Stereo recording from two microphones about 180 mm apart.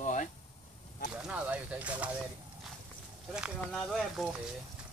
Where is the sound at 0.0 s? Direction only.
45° left (ahead or behind).